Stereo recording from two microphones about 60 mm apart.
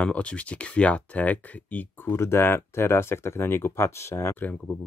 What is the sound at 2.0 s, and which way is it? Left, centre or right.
Speech, left.